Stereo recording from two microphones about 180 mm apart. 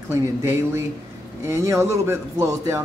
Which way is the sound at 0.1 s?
15° right (ahead or behind).